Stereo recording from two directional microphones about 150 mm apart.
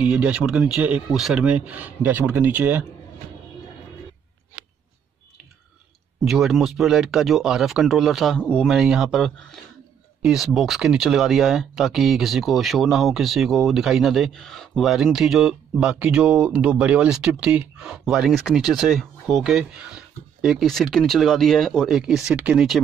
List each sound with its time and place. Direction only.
0.0 s speech: 10° right (ahead or behind)
6.2 s speech: centre (ahead or behind)
8.6 s speech: 5° right (ahead or behind)